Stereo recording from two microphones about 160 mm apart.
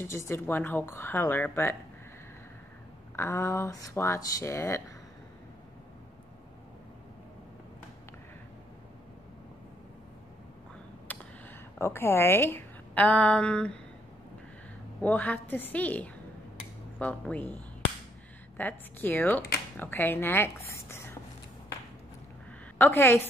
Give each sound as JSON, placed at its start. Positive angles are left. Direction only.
{"t": 0.0, "sound": "a woman's voice", "side_deg": 15}
{"t": 3.2, "sound": "a woman's voice", "side_deg": 15}
{"t": 11.1, "sound": "a sound", "side_deg": 10}
{"t": 11.8, "sound": "a woman's voice", "side_deg": 15}
{"t": 15.0, "sound": "a woman's voice", "side_deg": 10}
{"t": 18.6, "sound": "a woman's voice", "side_deg": 10}
{"t": 22.8, "sound": "a woman's voice", "side_deg": 15}